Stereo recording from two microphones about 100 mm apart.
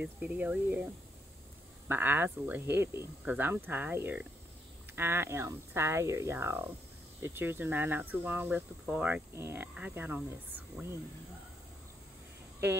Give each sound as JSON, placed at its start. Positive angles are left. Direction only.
{"t": 0.0, "sound": "speech", "side_deg": -15}
{"t": 1.9, "sound": "speech", "side_deg": -20}